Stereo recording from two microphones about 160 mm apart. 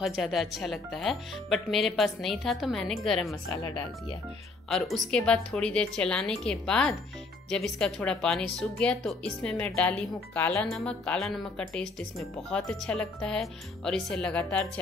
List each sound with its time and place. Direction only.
0.0 s speech: centre (ahead or behind)
3.4 s speech: 20° left (ahead or behind)
4.6 s speech: centre (ahead or behind)